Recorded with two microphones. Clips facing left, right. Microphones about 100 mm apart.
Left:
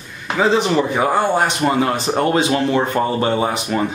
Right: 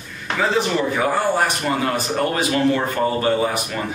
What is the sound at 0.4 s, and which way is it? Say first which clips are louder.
Speech: left 4 dB; 20° left (ahead or behind).